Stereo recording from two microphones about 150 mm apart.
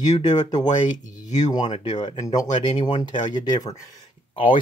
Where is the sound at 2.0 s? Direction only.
25° left (ahead or behind).